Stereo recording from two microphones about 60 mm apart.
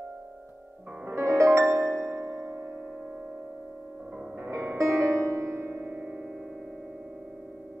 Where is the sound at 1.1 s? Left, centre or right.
Right.